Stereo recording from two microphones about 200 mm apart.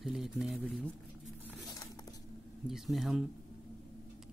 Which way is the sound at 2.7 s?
Centre (ahead or behind).